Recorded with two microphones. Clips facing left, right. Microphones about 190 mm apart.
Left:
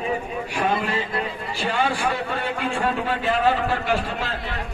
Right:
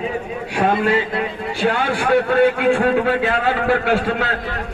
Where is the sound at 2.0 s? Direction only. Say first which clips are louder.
Right 11 dB; 65° right (ahead or behind).